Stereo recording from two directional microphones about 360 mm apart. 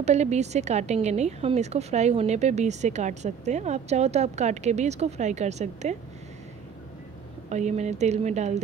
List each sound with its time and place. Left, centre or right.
0.0 s a woman's voice: centre
7.4 s a woman's voice: centre